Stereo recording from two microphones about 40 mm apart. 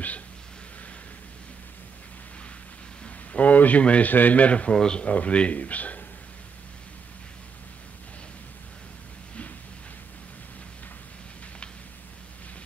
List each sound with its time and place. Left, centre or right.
3.3 s speech: left
4.7 s speech: centre
5.0 s speech: left